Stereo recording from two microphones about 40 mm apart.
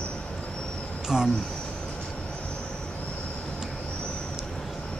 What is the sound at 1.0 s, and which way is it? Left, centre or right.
Speech, centre.